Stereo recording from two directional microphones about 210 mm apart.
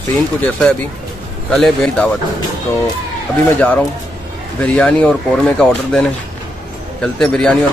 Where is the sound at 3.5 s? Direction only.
5° left (ahead or behind).